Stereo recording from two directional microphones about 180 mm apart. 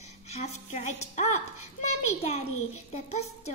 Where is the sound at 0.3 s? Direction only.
40° left (ahead or behind).